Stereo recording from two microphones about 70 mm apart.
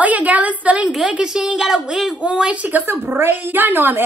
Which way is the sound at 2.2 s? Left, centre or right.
Centre.